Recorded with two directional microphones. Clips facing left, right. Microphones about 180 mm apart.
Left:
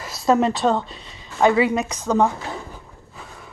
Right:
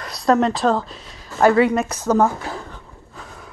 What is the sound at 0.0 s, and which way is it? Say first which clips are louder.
A woman's voice: right 1 dB; centre (ahead or behind).